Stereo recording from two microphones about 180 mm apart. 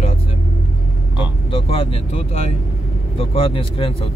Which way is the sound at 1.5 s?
30° left (ahead or behind).